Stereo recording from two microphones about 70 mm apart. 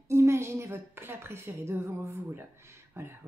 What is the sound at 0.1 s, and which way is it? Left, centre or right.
Speech, right.